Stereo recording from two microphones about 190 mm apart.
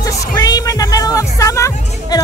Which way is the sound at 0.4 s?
20° left (ahead or behind).